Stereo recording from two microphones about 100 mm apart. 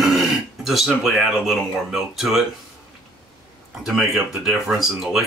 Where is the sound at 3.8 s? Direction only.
5° right (ahead or behind).